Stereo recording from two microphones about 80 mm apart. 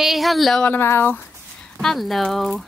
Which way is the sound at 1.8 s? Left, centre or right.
Centre.